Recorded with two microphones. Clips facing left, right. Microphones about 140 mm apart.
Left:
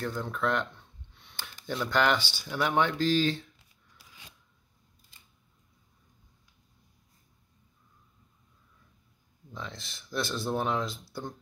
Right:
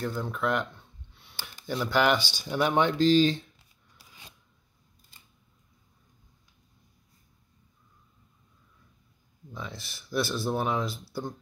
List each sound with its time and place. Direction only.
0.0 s speech: 5° right (ahead or behind)
9.5 s speech: 5° right (ahead or behind)